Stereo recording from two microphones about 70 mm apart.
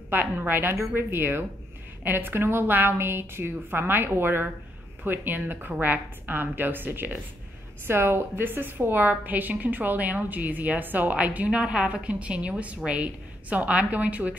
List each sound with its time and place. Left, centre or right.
0.1 s a woman's voice: right